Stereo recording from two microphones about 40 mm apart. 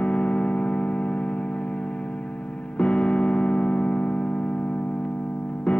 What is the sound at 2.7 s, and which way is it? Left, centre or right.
Music, left.